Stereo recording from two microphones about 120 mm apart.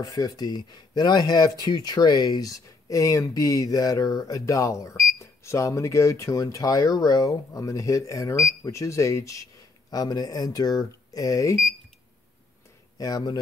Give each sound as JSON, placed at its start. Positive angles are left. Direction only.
{"t": 0.0, "sound": "speech", "side_deg": 30}
{"t": 12.9, "sound": "speech", "side_deg": 30}